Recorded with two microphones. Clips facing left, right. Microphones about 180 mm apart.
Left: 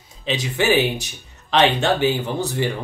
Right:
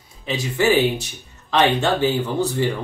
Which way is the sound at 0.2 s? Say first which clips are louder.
Even; 20° left (ahead or behind).